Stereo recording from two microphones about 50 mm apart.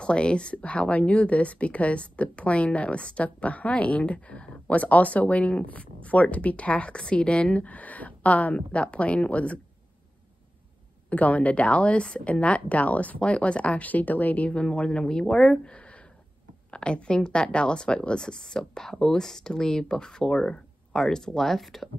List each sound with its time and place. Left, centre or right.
0.0 s speech: left
11.1 s speech: left; by 21.8 s centre